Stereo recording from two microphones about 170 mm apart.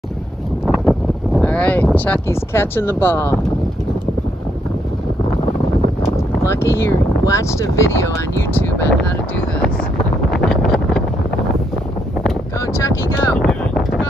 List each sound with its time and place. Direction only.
0.7 s wind: 5° left (ahead or behind)
6.1 s speech: 15° left (ahead or behind)
10.3 s wind noise: 5° left (ahead or behind)
12.5 s speech: 20° left (ahead or behind)
13.4 s wind noise: 5° left (ahead or behind)